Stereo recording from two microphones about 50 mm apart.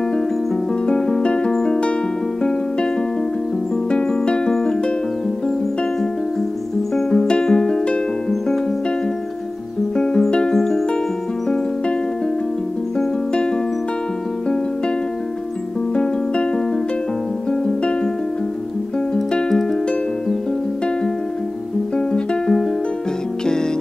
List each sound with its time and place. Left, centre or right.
0.8 s music: centre
3.9 s music: centre
7.0 s music: centre
9.9 s music: centre
13.3 s music: centre
15.9 s music: centre
19.3 s music: centre
21.9 s music: centre